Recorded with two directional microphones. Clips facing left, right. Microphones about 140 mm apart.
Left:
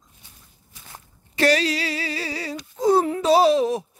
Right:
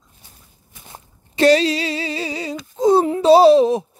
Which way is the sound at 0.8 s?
25° right (ahead or behind).